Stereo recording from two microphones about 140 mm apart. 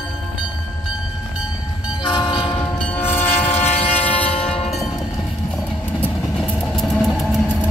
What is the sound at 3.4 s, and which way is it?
Train, 50° left (ahead or behind).